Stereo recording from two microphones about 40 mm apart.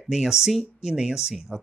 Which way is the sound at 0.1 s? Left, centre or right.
Centre.